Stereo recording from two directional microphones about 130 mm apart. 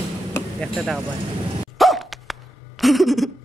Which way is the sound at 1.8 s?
Centre (ahead or behind).